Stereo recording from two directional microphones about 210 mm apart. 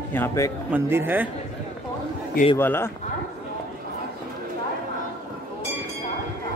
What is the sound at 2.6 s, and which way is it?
Speech, 10° left (ahead or behind).